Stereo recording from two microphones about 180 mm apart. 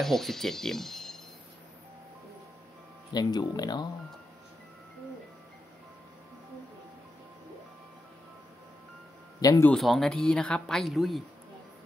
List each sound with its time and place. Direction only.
0.0 s speech: centre (ahead or behind)
3.1 s speech: 20° left (ahead or behind)
9.4 s speech: 20° left (ahead or behind)
9.7 s speech: centre (ahead or behind)